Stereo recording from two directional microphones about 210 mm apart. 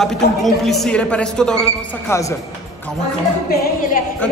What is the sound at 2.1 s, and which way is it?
Speech, 15° left (ahead or behind).